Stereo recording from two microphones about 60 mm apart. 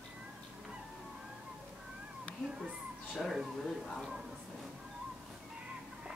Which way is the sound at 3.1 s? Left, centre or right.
Centre.